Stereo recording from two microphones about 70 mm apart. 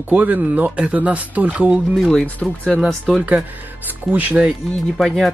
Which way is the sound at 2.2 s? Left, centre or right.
Centre.